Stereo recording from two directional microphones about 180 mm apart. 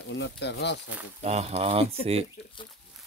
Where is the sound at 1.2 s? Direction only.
35° right (ahead or behind).